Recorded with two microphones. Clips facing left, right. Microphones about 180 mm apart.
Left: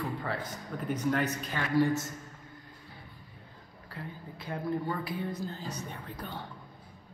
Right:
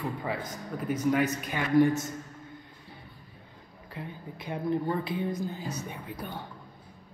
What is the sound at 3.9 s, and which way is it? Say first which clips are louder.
A woman's voice: right 3 dB; 20° right (ahead or behind).